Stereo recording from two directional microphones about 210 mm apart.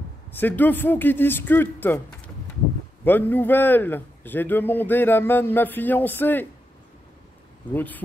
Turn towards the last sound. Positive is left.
turn(degrees=10)  # may be behind; listen again after turning